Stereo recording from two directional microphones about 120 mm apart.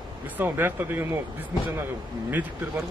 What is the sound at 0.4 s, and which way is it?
Speech, 15° right (ahead or behind).